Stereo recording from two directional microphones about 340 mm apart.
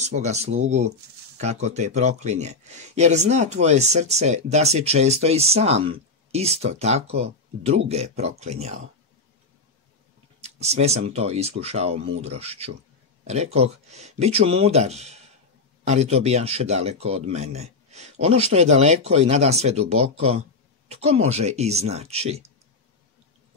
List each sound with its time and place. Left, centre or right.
0.0 s speech: centre
10.4 s speech: centre